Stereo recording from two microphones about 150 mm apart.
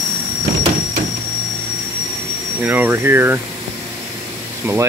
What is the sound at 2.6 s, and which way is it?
Speech, 10° right (ahead or behind).